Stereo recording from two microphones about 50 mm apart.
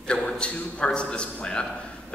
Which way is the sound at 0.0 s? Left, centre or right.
Left.